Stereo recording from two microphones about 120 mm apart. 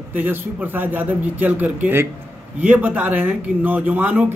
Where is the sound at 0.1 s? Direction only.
15° right (ahead or behind).